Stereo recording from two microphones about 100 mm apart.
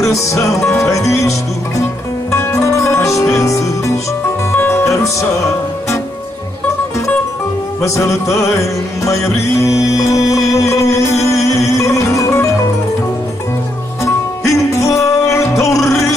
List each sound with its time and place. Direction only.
0.0 s music: 30° left (ahead or behind)
2.3 s music: 30° left (ahead or behind)
7.8 s music: 30° left (ahead or behind)
14.0 s music: 30° left (ahead or behind)